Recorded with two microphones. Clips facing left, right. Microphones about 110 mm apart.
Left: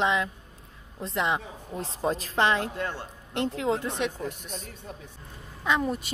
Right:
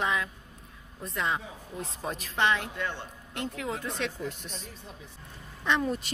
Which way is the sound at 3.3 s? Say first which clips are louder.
Left 7 dB; 30° left (ahead or behind).